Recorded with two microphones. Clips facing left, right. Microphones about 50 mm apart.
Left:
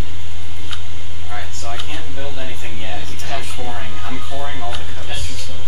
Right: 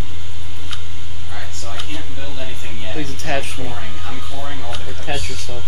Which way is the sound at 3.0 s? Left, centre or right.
Right.